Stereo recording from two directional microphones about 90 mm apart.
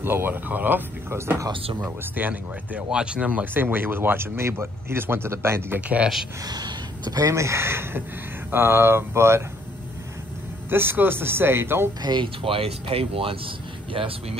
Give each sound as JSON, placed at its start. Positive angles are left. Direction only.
{"t": 0.0, "sound": "speech", "side_deg": -25}
{"t": 1.5, "sound": "speech", "side_deg": -80}
{"t": 1.9, "sound": "speech", "side_deg": -20}
{"t": 5.8, "sound": "speech", "side_deg": -15}
{"t": 6.4, "sound": "speech", "side_deg": -45}
{"t": 10.7, "sound": "speech", "side_deg": -25}
{"t": 12.0, "sound": "speech", "side_deg": -60}